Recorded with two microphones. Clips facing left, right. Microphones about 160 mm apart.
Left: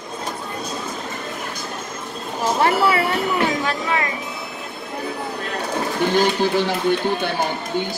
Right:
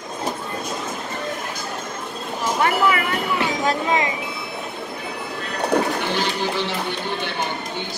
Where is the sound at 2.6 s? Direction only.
30° left (ahead or behind).